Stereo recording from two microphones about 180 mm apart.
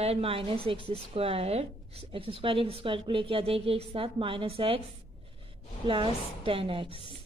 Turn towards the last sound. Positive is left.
turn(degrees=-30)  # may be behind; listen again after turning